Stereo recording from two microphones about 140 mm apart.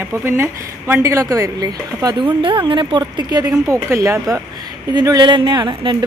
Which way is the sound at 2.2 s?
35° right (ahead or behind).